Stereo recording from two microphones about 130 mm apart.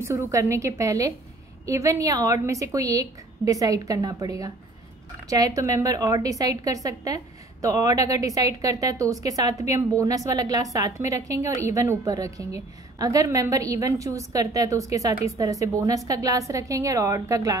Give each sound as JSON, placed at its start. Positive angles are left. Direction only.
{"t": 0.0, "sound": "a woman's voice", "side_deg": -20}